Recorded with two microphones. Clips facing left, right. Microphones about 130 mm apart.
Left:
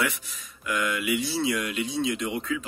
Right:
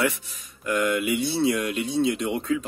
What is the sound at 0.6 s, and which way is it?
Speech, 35° right (ahead or behind).